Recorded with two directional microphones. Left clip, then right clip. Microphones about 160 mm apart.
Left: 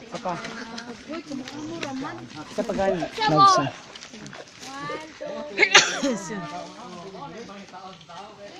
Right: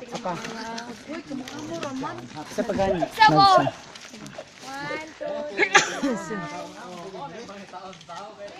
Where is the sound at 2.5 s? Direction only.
10° right (ahead or behind).